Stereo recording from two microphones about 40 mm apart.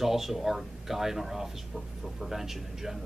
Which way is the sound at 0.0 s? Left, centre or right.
Centre.